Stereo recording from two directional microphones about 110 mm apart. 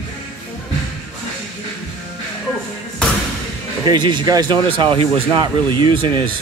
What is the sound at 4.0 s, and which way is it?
Speech, 40° right (ahead or behind).